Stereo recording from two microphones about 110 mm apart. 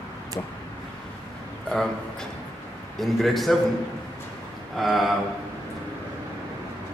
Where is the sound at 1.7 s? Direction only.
5° left (ahead or behind).